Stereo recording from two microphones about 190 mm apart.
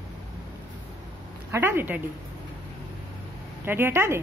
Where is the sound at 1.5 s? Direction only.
10° right (ahead or behind).